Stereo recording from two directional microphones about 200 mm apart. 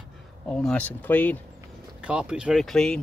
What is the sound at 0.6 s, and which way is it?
Speech, 5° left (ahead or behind).